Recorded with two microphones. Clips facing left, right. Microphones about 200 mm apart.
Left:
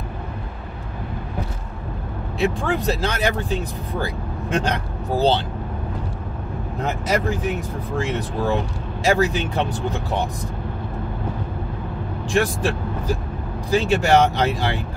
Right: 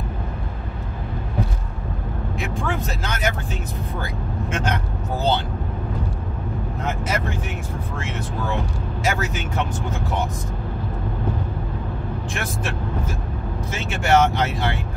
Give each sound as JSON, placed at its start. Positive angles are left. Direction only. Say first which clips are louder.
{"t": 2.3, "sound": "speech", "louder": "left 6 dB", "side_deg": 35}
{"t": 6.8, "sound": "speech", "louder": "left 4 dB", "side_deg": 35}
{"t": 12.4, "sound": "speech", "louder": "left 11 dB", "side_deg": 35}